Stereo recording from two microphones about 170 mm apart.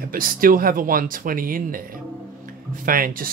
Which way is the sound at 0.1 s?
55° right (ahead or behind).